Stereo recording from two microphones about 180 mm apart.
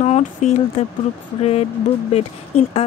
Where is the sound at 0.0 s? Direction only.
40° left (ahead or behind).